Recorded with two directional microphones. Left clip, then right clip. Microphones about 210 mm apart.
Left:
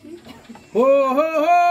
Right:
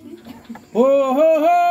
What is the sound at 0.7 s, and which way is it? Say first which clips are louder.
Speech: even; 10° left (ahead or behind).